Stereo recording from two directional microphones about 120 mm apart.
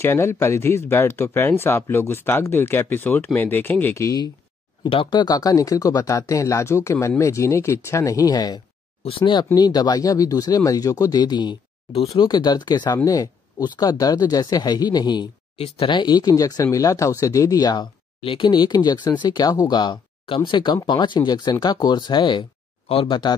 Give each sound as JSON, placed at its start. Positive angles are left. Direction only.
{"t": 0.0, "sound": "speech", "side_deg": 20}
{"t": 9.0, "sound": "speech", "side_deg": 45}
{"t": 18.2, "sound": "speech", "side_deg": 45}